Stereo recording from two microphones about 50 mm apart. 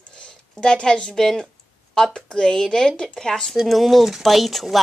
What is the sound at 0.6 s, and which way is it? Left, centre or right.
Speech, centre.